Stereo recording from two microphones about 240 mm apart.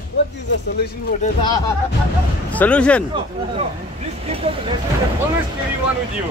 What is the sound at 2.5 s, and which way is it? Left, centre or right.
Speech, centre.